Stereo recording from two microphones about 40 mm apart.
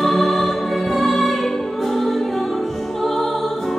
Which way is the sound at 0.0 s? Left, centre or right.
Centre.